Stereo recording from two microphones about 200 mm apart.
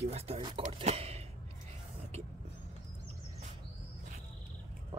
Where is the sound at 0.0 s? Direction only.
30° right (ahead or behind).